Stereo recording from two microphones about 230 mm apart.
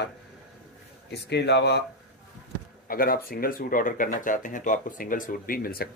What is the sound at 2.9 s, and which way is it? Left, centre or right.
Speech, left.